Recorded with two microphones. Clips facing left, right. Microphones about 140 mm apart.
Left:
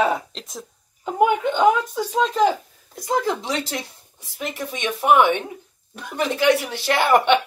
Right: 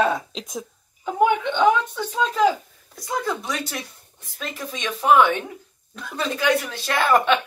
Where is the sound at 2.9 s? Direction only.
20° left (ahead or behind).